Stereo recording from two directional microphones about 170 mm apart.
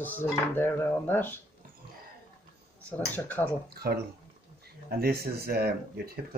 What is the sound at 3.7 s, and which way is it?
Speech, 65° right (ahead or behind).